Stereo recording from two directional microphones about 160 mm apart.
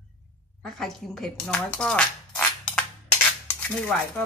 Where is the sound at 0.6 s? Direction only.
Centre (ahead or behind).